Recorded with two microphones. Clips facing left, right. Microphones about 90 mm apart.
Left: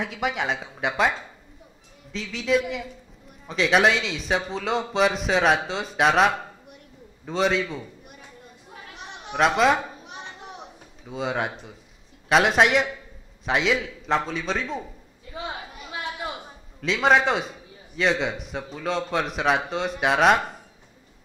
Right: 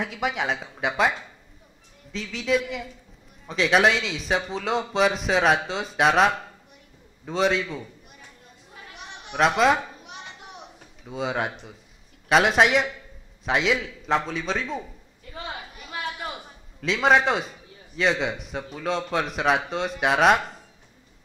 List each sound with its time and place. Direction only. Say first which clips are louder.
0.0 s a man's voice: even; centre (ahead or behind)
2.1 s a man's voice: left 1 dB; centre (ahead or behind)
9.3 s a man's voice: even; centre (ahead or behind)
11.1 s a man's voice: even; centre (ahead or behind)
15.3 s a sound: left 2 dB; 15° left (ahead or behind)
16.8 s a man's voice: even; centre (ahead or behind)